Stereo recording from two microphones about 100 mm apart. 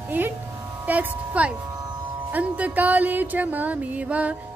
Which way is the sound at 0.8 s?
15° right (ahead or behind).